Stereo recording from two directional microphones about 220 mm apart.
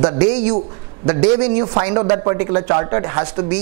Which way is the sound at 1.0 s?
20° right (ahead or behind).